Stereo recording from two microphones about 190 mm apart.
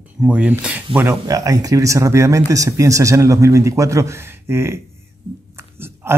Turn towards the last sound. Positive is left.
turn(degrees=-10)  # may be behind; listen again after turning